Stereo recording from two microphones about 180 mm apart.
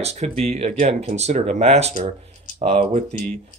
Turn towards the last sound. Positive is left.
turn(degrees=-30)  # may be behind; listen again after turning